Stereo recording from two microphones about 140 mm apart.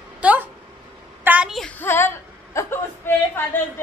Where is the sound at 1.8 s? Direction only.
15° left (ahead or behind).